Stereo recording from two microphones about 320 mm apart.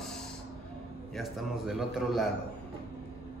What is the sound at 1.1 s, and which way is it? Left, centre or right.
Speech, centre.